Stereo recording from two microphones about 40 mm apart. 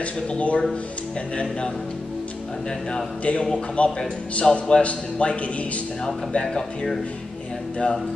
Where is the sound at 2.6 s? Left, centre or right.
Centre.